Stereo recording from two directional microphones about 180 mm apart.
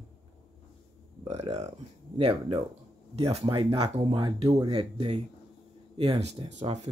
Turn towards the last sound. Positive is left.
turn(degrees=-40)  # may be behind; listen again after turning